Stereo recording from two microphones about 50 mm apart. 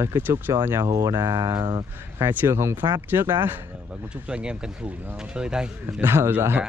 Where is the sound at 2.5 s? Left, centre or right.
Right.